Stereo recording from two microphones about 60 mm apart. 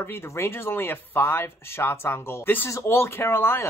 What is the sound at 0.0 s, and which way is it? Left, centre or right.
Speech, left.